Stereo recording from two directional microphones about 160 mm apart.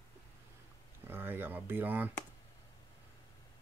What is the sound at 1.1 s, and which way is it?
Speech, 15° right (ahead or behind).